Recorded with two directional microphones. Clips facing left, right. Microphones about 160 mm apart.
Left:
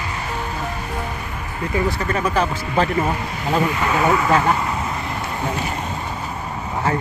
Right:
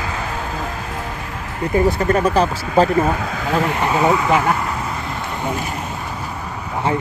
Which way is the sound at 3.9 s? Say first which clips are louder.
Right 2 dB; 15° right (ahead or behind).